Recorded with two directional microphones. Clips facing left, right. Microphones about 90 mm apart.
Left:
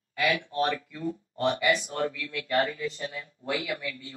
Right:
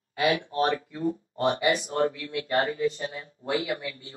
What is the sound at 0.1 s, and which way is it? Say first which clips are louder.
Speech: right 2 dB; 35° right (ahead or behind).